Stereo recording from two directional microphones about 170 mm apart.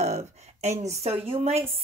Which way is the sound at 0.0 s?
40° right (ahead or behind).